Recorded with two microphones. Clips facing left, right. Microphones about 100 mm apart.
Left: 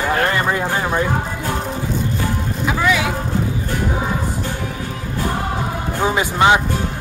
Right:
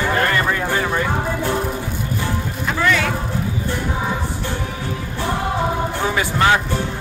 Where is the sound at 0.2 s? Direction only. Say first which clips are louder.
Left 1 dB; 20° left (ahead or behind).